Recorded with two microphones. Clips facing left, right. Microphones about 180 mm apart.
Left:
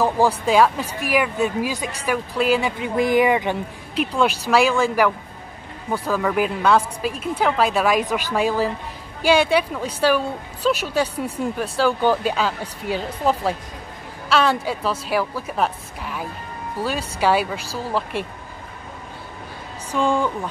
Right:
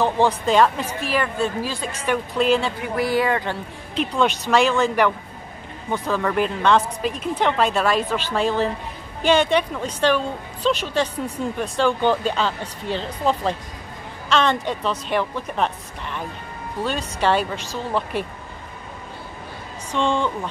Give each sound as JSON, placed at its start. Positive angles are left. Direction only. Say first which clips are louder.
{"t": 0.0, "sound": "a woman's voice", "louder": "left 1 dB", "side_deg": 5}
{"t": 2.8, "sound": "a woman's voice", "louder": "left 3 dB", "side_deg": 20}
{"t": 19.9, "sound": "a woman's voice", "louder": "left 1 dB", "side_deg": 5}